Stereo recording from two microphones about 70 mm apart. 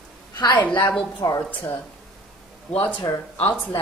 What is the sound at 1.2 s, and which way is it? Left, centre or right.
Speech, left.